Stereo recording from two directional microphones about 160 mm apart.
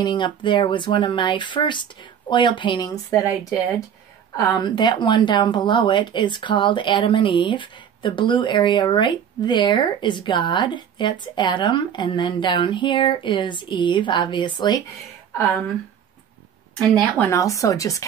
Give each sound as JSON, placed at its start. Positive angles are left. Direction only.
{"t": 0.0, "sound": "speech", "side_deg": 30}
{"t": 17.2, "sound": "speech", "side_deg": 20}